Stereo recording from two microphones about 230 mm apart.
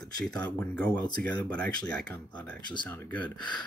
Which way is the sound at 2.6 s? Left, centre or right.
Centre.